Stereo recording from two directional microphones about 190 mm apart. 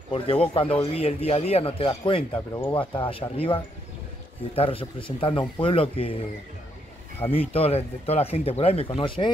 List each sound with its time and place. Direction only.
0.1 s speech: 30° left (ahead or behind)
7.2 s speech: 30° left (ahead or behind)